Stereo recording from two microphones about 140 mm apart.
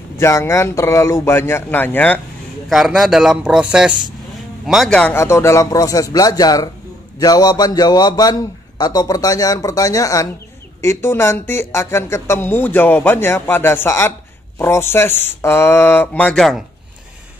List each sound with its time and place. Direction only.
0.2 s a man's voice: 20° left (ahead or behind)
2.7 s a man's voice: centre (ahead or behind)
5.1 s a man's voice: 20° left (ahead or behind); by 16.6 s centre (ahead or behind)